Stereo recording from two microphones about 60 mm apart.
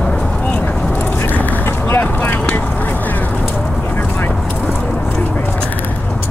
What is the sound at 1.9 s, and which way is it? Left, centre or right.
Vehicle, left.